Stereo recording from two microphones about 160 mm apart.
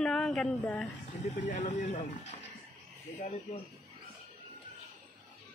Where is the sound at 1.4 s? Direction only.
50° left (ahead or behind).